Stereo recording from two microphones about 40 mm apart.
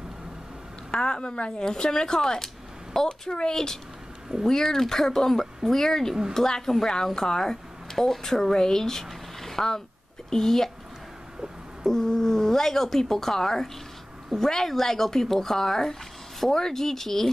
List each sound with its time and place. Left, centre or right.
0.9 s speech: left
11.8 s speech: centre